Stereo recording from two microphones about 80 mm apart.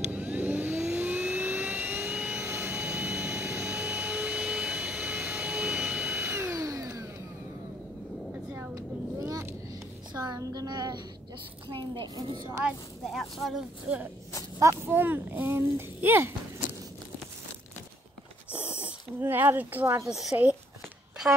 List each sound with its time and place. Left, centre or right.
0.0 s vehicle: centre
0.8 s jet engine: centre
6.3 s a sound: right
8.5 s vehicle: right
10.1 s a woman's voice: right
13.0 s speech: centre
13.9 s speech: centre
14.6 s speech: right
18.5 s a sound: centre
19.2 s speech: right